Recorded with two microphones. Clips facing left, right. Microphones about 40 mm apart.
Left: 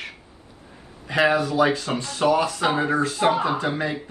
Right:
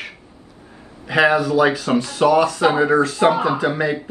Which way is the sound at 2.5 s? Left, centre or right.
Right.